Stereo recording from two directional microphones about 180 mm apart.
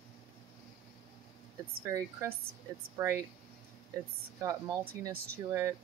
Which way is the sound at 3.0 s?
15° right (ahead or behind).